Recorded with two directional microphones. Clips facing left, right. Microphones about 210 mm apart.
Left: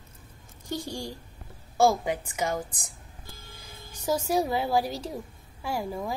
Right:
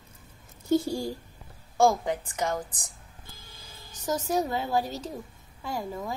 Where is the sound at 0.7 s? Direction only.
5° right (ahead or behind).